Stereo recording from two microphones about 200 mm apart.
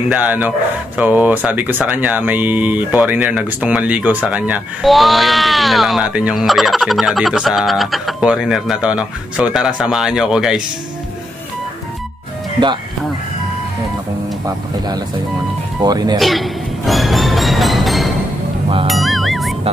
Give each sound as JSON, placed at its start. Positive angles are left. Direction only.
{"t": 0.1, "sound": "speech", "side_deg": -10}
{"t": 15.8, "sound": "speech", "side_deg": -20}
{"t": 16.2, "sound": "music", "side_deg": 0}